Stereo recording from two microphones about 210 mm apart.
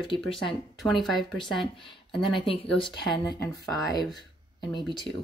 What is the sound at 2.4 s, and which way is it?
Speech, 25° left (ahead or behind).